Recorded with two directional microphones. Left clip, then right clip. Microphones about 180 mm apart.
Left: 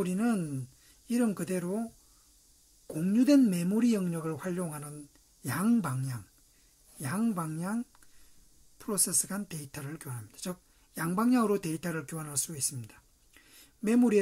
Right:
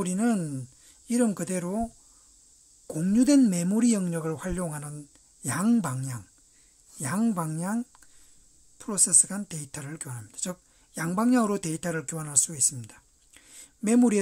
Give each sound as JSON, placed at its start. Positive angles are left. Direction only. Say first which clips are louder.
{"t": 0.0, "sound": "speech", "louder": "right 3 dB", "side_deg": -30}
{"t": 2.9, "sound": "speech", "louder": "right 3 dB", "side_deg": -30}
{"t": 8.7, "sound": "a woman's voice", "louder": "right 7 dB", "side_deg": -15}